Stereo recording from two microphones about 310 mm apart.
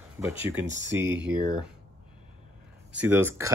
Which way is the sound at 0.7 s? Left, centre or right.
Right.